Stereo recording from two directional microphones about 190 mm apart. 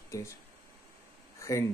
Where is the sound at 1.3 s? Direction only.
15° left (ahead or behind).